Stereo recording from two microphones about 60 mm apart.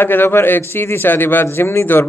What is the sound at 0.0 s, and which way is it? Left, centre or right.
Speech, left.